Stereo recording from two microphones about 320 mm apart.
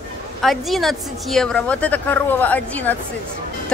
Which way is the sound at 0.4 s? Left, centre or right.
Centre.